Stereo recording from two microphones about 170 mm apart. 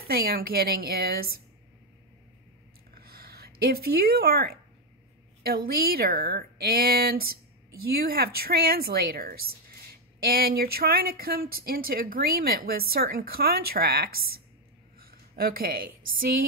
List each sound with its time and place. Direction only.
0.0 s speech: 60° right (ahead or behind)
2.9 s a sound: 60° right (ahead or behind)
5.4 s a woman's voice: 60° right (ahead or behind)